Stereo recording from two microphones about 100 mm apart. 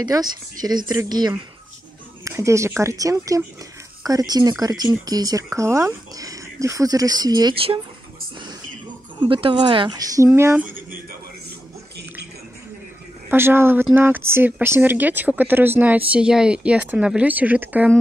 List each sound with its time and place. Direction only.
0.0 s speech: 40° right (ahead or behind)
2.2 s speech: 30° right (ahead or behind)
7.5 s speech: 65° right (ahead or behind)
9.2 s speech: 60° right (ahead or behind); by 10.7 s 25° right (ahead or behind)
13.3 s speech: 25° right (ahead or behind)
16.1 s speech: 10° right (ahead or behind)